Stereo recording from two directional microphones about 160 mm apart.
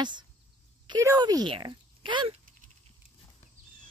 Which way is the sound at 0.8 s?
25° right (ahead or behind).